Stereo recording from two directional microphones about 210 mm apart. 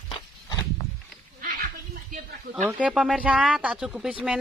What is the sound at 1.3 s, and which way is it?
Goat, 45° right (ahead or behind).